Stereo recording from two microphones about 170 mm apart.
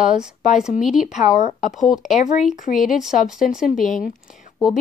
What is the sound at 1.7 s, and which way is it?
Speech, centre (ahead or behind).